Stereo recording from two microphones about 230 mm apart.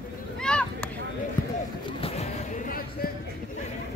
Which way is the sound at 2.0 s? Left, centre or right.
Left.